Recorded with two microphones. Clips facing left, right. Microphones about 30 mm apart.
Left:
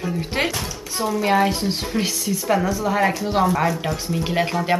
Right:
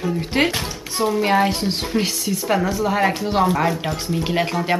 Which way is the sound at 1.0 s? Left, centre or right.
Right.